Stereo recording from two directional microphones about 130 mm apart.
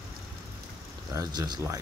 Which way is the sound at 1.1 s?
30° right (ahead or behind).